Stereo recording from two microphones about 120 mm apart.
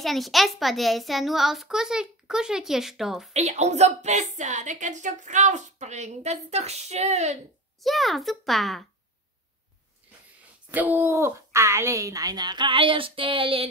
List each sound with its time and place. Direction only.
0.0 s a child's voice: centre (ahead or behind)
3.3 s a woman's voice: 70° right (ahead or behind)
7.8 s a child's voice: centre (ahead or behind)
10.7 s speech: 15° right (ahead or behind); by 13.7 s 50° right (ahead or behind)